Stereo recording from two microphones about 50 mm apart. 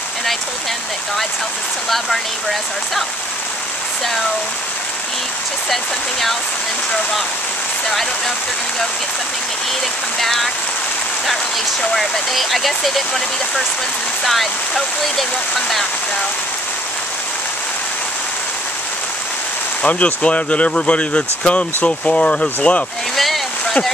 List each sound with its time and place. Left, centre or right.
10.2 s speech: centre
11.8 s speech: centre
19.8 s speech: left
23.1 s a sound: centre